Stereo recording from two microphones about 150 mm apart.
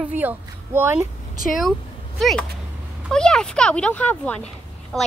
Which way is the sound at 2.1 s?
Centre (ahead or behind).